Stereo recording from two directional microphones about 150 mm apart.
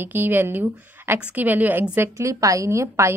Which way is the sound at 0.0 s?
15° right (ahead or behind).